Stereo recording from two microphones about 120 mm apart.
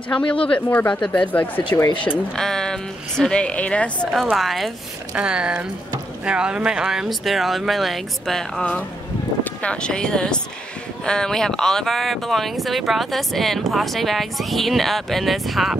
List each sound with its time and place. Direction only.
0.1 s speech: 10° left (ahead or behind)
1.7 s speech: 40° left (ahead or behind)
2.3 s speech: 5° left (ahead or behind)